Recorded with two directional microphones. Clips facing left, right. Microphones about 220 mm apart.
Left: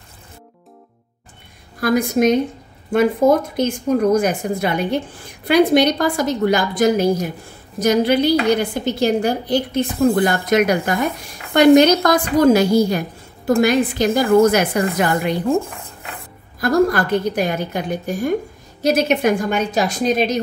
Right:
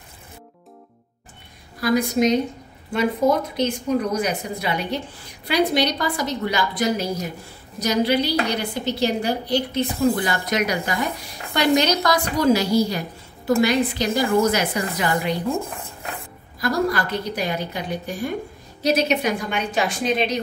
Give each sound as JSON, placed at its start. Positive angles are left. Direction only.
{"t": 1.8, "sound": "a woman's voice", "side_deg": 50}
{"t": 16.5, "sound": "a woman's voice", "side_deg": 50}